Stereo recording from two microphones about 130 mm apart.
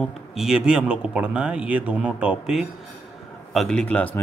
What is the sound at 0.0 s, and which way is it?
Speech, centre (ahead or behind).